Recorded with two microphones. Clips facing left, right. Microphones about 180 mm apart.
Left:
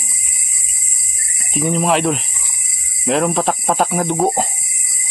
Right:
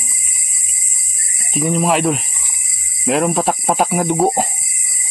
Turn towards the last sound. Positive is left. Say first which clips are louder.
# right 1 dB
turn(degrees=-5)  # may be behind; listen again after turning